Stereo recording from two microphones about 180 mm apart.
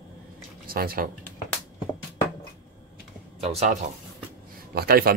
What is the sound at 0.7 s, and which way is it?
Speech, 55° right (ahead or behind).